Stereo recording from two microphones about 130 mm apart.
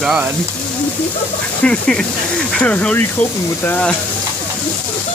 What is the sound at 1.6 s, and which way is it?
Speech, 5° left (ahead or behind).